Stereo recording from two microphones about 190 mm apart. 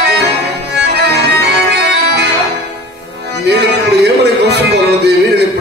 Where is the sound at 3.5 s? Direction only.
60° right (ahead or behind).